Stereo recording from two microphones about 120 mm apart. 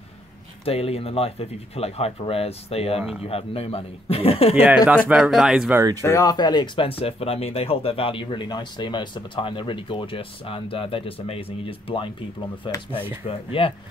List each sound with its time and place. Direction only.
0.7 s speech: 55° left (ahead or behind)
4.8 s speech: 10° right (ahead or behind)
6.0 s speech: 25° left (ahead or behind)
6.3 s speech: 35° left (ahead or behind)